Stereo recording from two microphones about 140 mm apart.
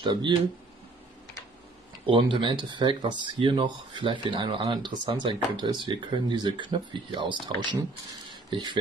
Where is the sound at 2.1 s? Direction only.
35° right (ahead or behind).